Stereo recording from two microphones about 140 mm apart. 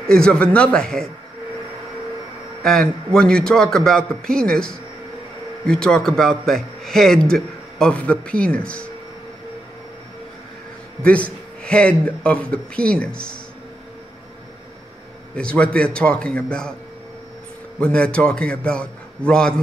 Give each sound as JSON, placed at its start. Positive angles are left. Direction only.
{"t": 0.1, "sound": "a man's voice", "side_deg": 5}
{"t": 2.6, "sound": "a man's voice", "side_deg": 5}
{"t": 11.0, "sound": "a man's voice", "side_deg": 10}
{"t": 15.3, "sound": "a man's voice", "side_deg": 5}
{"t": 17.7, "sound": "a man's voice", "side_deg": 5}